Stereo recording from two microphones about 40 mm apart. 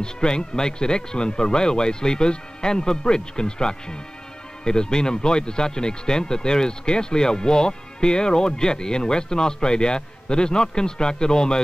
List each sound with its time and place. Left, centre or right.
0.0 s speech: left